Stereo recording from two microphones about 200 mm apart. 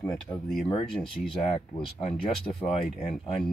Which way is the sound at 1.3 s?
25° left (ahead or behind).